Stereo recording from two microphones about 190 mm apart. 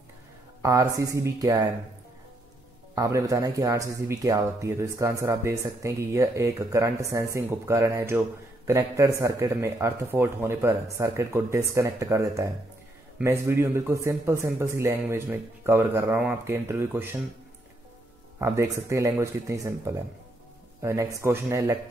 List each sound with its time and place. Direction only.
0.6 s speech: 15° right (ahead or behind)
2.9 s speech: 15° right (ahead or behind)
18.4 s speech: 15° right (ahead or behind)